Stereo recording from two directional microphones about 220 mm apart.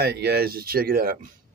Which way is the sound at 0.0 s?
45° right (ahead or behind).